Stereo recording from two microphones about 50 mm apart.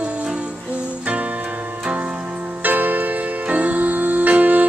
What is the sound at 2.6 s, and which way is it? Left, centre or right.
Music, right.